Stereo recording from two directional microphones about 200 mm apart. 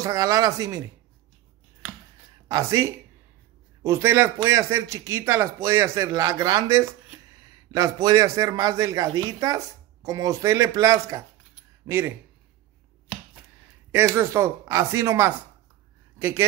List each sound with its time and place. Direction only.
0.0 s speech: 20° right (ahead or behind)
2.4 s speech: 15° right (ahead or behind)
13.9 s speech: 10° right (ahead or behind)